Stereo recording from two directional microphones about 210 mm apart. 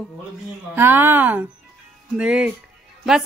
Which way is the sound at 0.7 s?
10° right (ahead or behind).